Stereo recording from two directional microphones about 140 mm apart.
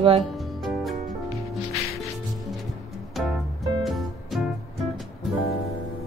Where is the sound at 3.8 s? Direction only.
Centre (ahead or behind).